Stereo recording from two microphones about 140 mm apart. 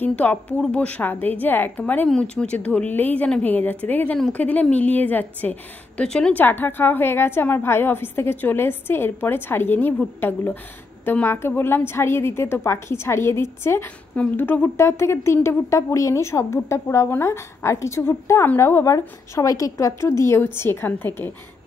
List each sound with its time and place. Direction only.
0.0 s a woman's voice: 10° left (ahead or behind)